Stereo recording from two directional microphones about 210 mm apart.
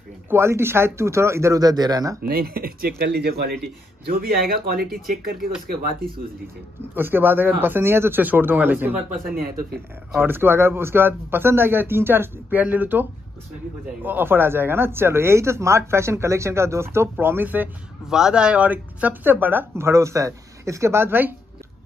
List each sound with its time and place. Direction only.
0.3 s speech: 10° right (ahead or behind)
2.2 s speech: 45° right (ahead or behind)
7.0 s speech: 10° right (ahead or behind)
14.0 s speech: 10° right (ahead or behind)